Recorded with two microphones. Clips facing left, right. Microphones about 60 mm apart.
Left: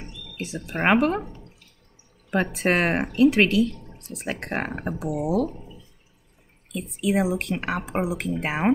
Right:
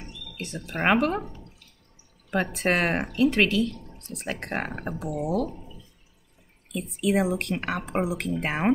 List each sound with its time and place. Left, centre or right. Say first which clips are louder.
0.0 s speech: left 3 dB; centre
2.3 s speech: left 2 dB; centre
5.5 s a sound: left 1 dB; centre
6.7 s speech: even; centre